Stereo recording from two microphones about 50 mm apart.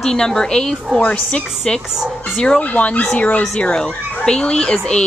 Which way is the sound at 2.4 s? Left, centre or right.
Left.